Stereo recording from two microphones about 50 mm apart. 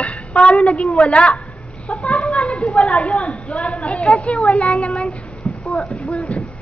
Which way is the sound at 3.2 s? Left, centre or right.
Left.